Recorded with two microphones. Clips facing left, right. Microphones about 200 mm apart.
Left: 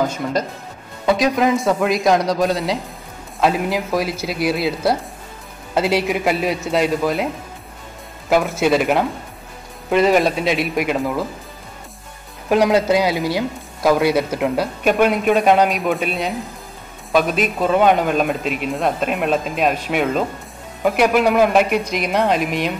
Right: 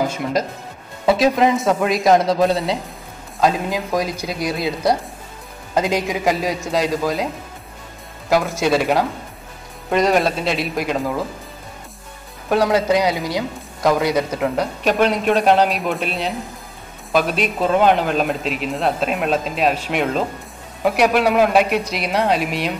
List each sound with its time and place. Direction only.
1.4 s a man's voice: centre (ahead or behind)
8.3 s a man's voice: 5° left (ahead or behind)
12.4 s a man's voice: 10° left (ahead or behind)
21.8 s speech: 50° left (ahead or behind)